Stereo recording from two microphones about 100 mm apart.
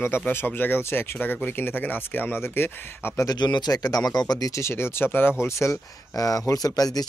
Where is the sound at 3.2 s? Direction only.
45° left (ahead or behind).